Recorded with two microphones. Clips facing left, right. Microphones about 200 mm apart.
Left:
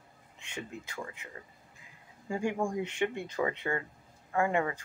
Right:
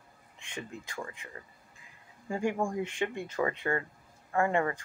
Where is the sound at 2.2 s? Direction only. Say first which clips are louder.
Right 1 dB; 15° left (ahead or behind).